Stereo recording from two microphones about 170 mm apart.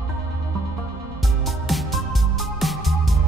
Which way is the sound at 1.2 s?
Centre (ahead or behind).